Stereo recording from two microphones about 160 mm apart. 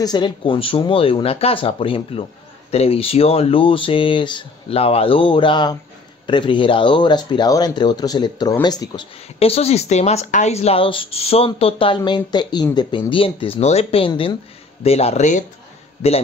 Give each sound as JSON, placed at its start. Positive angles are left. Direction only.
{"t": 0.0, "sound": "speech", "side_deg": 25}
{"t": 9.4, "sound": "speech", "side_deg": 40}